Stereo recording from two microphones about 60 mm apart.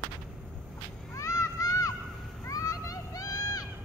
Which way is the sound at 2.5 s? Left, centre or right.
Left.